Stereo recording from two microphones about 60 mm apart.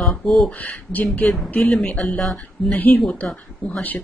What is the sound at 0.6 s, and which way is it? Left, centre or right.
A woman's voice, left.